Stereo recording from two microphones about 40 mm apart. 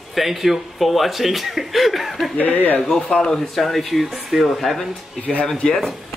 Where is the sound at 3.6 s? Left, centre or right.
Centre.